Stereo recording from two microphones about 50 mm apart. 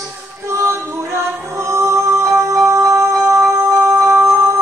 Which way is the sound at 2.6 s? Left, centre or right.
Right.